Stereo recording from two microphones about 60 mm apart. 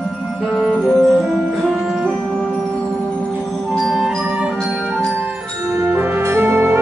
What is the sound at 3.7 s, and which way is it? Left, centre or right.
Music, centre.